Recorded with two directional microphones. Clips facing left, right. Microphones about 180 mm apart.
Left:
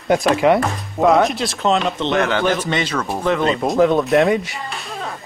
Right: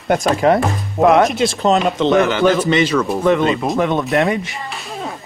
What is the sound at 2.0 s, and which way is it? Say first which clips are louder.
Speech: right 6 dB; 90° right.